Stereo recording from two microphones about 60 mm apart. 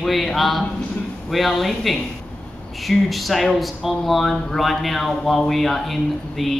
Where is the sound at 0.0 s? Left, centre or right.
Centre.